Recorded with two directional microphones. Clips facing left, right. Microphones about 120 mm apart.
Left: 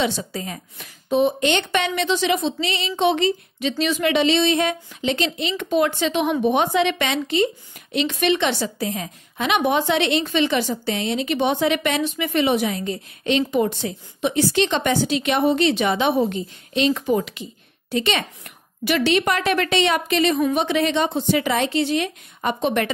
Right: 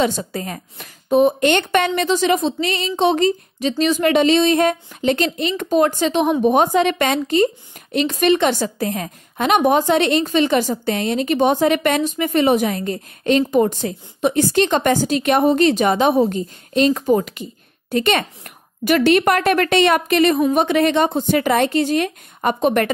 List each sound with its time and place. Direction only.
0.0 s speech: 45° right (ahead or behind)